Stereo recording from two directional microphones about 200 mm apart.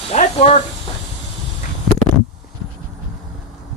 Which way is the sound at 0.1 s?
35° left (ahead or behind).